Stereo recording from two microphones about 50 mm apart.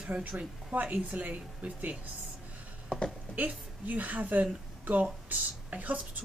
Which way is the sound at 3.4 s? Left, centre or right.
Right.